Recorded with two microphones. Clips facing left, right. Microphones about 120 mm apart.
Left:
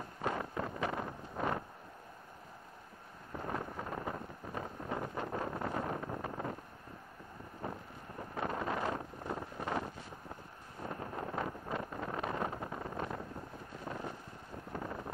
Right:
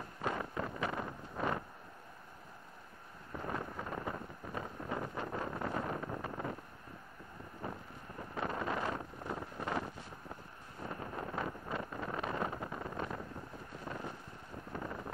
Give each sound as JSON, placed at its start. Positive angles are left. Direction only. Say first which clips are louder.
{"t": 0.2, "sound": "wind noise", "louder": "left 1 dB", "side_deg": 25}
{"t": 3.3, "sound": "wind noise", "louder": "left 1 dB", "side_deg": 25}
{"t": 8.2, "sound": "wind noise", "louder": "left 1 dB", "side_deg": 25}
{"t": 10.8, "sound": "vehicle", "louder": "left 1 dB", "side_deg": 25}
{"t": 13.9, "sound": "wind noise", "louder": "left 1 dB", "side_deg": 35}
{"t": 14.7, "sound": "wind noise", "louder": "left 1 dB", "side_deg": 20}